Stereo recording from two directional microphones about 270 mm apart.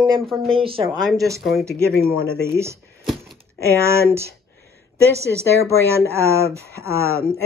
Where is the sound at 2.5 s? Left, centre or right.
Centre.